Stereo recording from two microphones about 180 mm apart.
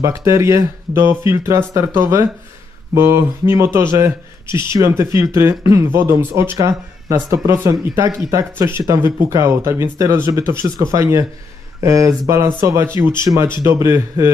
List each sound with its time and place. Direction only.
0.0 s speech: 15° right (ahead or behind)